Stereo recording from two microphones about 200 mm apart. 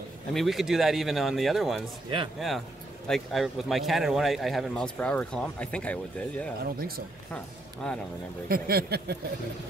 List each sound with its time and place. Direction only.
0.3 s speech: centre (ahead or behind)
7.8 s speech: 5° left (ahead or behind)
8.5 s speech: 50° right (ahead or behind)